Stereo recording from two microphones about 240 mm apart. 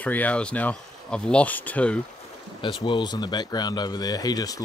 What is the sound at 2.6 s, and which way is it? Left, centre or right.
Speech, centre.